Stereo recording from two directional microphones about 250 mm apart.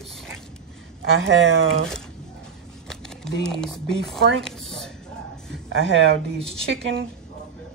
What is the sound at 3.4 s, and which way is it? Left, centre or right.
Speech, centre.